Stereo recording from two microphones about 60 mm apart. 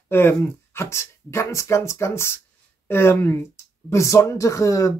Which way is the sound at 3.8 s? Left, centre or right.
Left.